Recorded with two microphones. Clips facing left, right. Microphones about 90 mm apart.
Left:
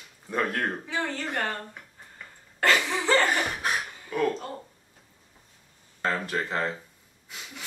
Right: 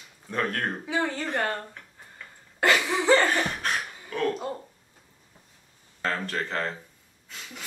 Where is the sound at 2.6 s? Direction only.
15° right (ahead or behind).